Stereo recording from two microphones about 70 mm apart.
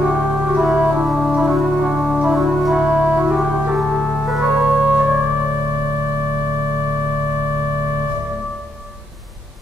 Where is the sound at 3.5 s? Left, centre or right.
Centre.